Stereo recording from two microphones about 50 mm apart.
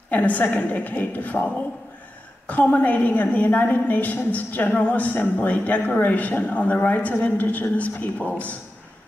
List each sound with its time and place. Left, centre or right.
0.1 s a woman's voice: left
2.4 s a woman's voice: left
5.1 s a man's voice: left